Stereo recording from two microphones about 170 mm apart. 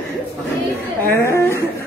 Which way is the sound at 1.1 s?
15° left (ahead or behind).